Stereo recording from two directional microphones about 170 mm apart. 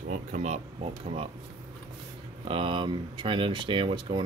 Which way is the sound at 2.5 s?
30° right (ahead or behind).